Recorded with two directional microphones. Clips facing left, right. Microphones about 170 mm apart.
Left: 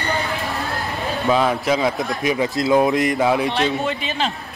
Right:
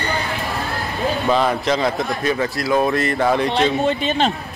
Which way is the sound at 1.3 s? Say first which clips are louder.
Left 1 dB; 5° left (ahead or behind).